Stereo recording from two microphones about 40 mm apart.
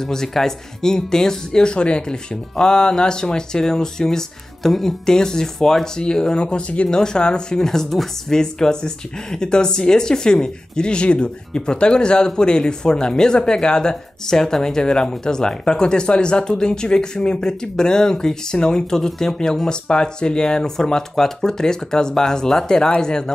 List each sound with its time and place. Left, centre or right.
0.0 s speech: centre